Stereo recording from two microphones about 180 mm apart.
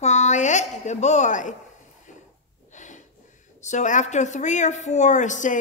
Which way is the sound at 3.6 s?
40° left (ahead or behind).